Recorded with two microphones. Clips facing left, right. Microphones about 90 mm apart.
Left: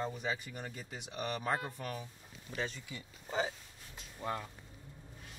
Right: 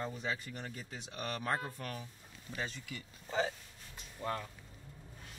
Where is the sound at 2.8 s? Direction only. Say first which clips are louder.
Even; 20° left (ahead or behind).